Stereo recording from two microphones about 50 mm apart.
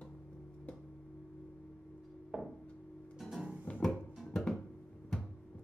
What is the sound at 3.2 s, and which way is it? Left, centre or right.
Music, centre.